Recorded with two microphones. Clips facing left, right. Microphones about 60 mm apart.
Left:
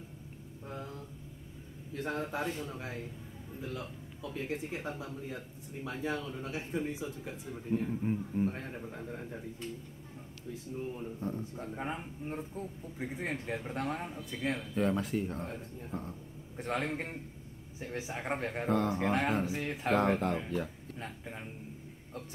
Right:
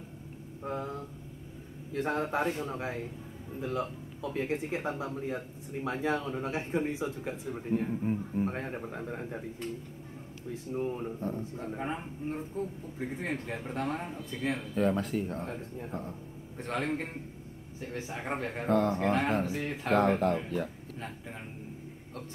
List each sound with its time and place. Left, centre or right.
0.7 s a man's voice: right
8.0 s a man's voice: centre
8.5 s speech: right
10.7 s speech: right
11.1 s speech: centre
11.6 s a man's voice: centre
17.7 s speech: centre
18.4 s speech: centre